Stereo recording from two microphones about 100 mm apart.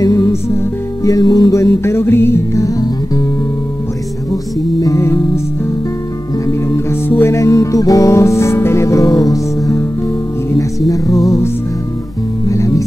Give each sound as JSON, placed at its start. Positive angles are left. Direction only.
{"t": 0.0, "sound": "music", "side_deg": 30}
{"t": 1.6, "sound": "music", "side_deg": 25}
{"t": 4.3, "sound": "music", "side_deg": 35}
{"t": 6.4, "sound": "music", "side_deg": 25}
{"t": 10.9, "sound": "music", "side_deg": 35}